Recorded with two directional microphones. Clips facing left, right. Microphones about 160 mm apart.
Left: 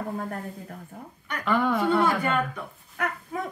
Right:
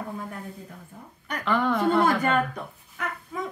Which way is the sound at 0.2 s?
55° left (ahead or behind).